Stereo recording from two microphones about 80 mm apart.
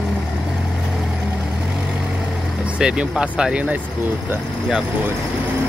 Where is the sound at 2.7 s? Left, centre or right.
Centre.